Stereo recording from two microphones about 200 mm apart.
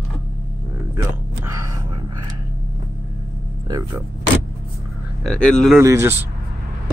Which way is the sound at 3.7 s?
15° right (ahead or behind).